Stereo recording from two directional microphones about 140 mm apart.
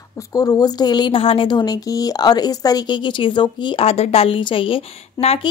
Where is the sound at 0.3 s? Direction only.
25° left (ahead or behind).